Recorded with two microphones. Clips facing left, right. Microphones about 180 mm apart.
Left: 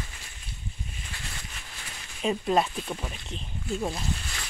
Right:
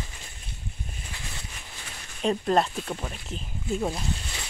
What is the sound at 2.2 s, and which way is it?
Speech, 5° left (ahead or behind).